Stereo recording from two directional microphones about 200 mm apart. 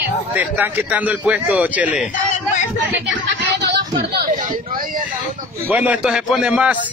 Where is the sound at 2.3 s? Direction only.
35° left (ahead or behind).